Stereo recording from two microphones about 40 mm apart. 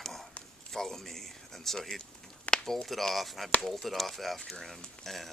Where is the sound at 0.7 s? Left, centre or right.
Centre.